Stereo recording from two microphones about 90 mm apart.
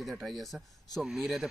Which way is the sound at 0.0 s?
Centre (ahead or behind).